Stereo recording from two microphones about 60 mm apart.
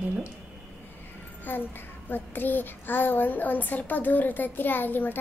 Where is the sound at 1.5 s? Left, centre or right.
Left.